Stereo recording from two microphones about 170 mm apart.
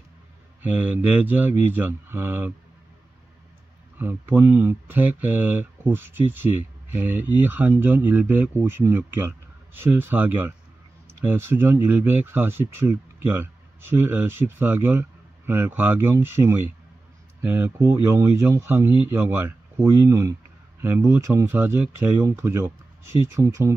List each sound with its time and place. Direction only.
0.6 s speech: 10° right (ahead or behind)
4.0 s speech: 10° right (ahead or behind)